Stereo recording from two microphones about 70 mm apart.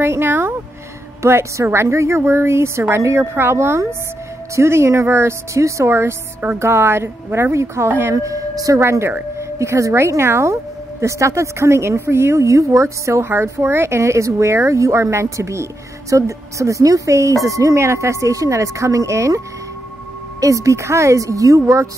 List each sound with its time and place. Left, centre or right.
0.0 s speech: right
1.2 s a woman's voice: right
8.7 s speech: right